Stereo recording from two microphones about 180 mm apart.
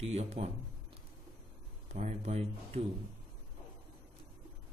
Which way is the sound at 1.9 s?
35° right (ahead or behind).